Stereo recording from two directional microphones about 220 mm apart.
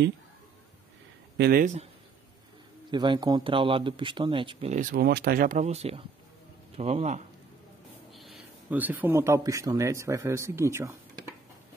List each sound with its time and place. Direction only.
1.4 s speech: 40° right (ahead or behind)
2.9 s speech: 20° right (ahead or behind)
8.1 s speech: centre (ahead or behind)